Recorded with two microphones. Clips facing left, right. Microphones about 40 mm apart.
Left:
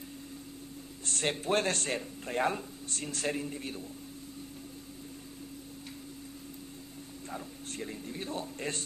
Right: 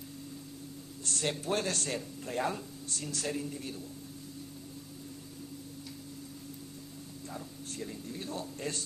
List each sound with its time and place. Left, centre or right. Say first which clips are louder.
1.0 s speech: left 2 dB; left
7.2 s a man's voice: left 2 dB; left